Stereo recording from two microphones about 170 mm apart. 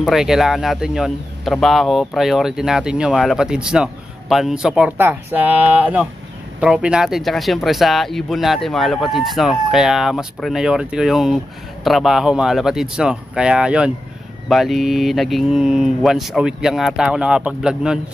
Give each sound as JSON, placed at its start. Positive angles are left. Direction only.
{"t": 0.0, "sound": "speech", "side_deg": 0}